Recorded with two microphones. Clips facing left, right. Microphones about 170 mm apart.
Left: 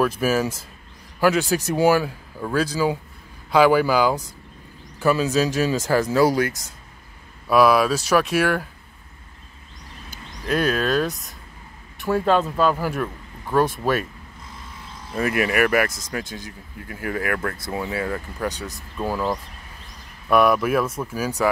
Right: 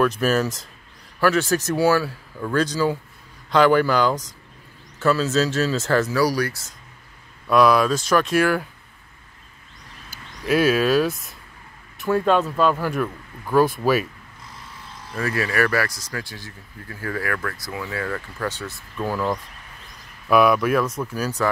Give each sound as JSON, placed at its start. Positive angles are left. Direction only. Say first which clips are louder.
{"t": 0.0, "sound": "speech", "louder": "right 1 dB", "side_deg": 10}
{"t": 7.4, "sound": "speech", "louder": "even", "side_deg": 5}
{"t": 10.0, "sound": "speech", "louder": "right 3 dB", "side_deg": -5}
{"t": 15.1, "sound": "speech", "louder": "left 2 dB", "side_deg": 20}
{"t": 20.2, "sound": "speech", "louder": "right 1 dB", "side_deg": 0}